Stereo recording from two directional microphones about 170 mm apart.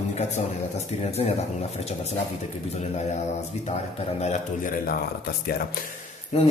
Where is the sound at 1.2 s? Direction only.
35° left (ahead or behind).